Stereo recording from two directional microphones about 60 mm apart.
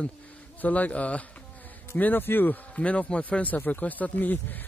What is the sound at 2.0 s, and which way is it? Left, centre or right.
Speech, left.